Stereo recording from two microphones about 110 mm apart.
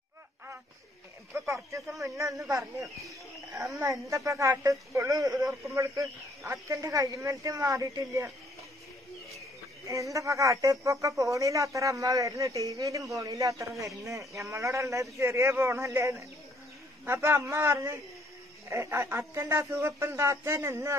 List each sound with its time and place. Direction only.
1.3 s speech: 25° right (ahead or behind)
3.8 s speech: 30° right (ahead or behind)
9.8 s speech: 30° right (ahead or behind)